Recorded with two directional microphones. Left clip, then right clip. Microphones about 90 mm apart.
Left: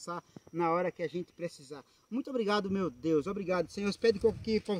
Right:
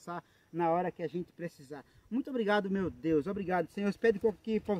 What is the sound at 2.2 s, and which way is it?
Speech, 10° right (ahead or behind).